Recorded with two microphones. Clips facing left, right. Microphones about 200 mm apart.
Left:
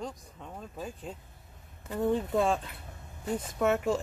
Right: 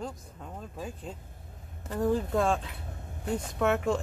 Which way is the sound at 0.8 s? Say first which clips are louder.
Even; centre (ahead or behind).